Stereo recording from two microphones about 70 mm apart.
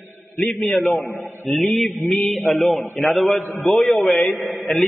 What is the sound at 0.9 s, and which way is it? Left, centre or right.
Speech, left.